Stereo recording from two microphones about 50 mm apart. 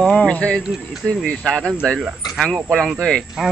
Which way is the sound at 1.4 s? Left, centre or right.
Centre.